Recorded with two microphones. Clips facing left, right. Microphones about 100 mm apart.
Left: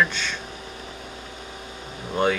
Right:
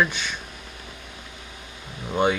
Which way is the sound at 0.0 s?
15° right (ahead or behind).